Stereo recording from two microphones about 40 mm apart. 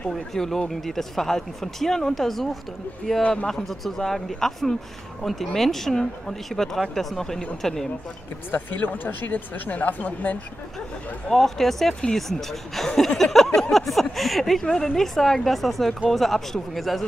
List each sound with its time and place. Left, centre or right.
0.1 s speech: centre
3.2 s speech: left
3.4 s speech: centre
8.5 s speech: left
11.2 s speech: centre